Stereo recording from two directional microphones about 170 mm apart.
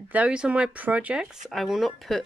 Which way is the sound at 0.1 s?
5° right (ahead or behind).